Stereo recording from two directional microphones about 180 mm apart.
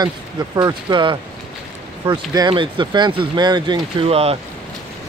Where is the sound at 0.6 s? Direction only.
25° right (ahead or behind).